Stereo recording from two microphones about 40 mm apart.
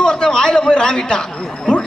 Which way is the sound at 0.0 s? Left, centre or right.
Left.